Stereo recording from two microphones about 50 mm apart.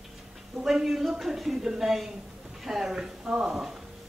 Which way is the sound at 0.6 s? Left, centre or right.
Centre.